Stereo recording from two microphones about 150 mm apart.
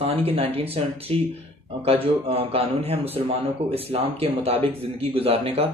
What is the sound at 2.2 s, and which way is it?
Speech, 40° right (ahead or behind).